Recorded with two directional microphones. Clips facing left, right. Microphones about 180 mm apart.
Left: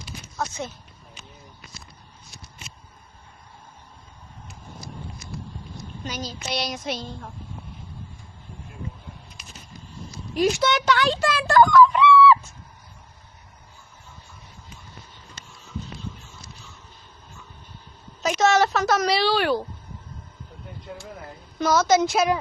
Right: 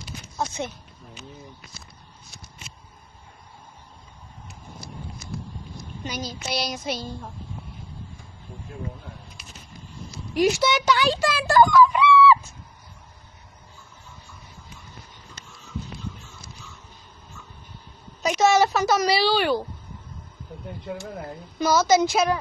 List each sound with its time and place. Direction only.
0.4 s speech: 25° right (ahead or behind)
6.0 s speech: 10° right (ahead or behind)
6.6 s a woman's voice: centre (ahead or behind)
10.4 s speech: 5° right (ahead or behind)
18.2 s a woman's voice: 5° right (ahead or behind)
21.5 s a woman's voice: centre (ahead or behind)